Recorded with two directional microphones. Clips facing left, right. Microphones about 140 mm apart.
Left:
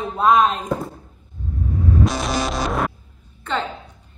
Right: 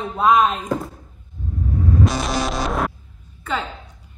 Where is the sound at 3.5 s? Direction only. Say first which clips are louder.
Left 1 dB; 5° right (ahead or behind).